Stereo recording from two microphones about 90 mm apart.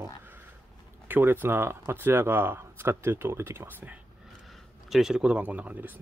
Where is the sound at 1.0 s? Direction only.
20° right (ahead or behind).